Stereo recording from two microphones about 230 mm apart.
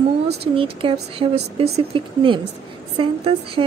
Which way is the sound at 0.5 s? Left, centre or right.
Right.